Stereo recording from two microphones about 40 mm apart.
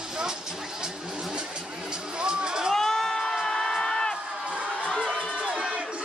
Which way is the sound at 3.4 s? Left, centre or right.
Centre.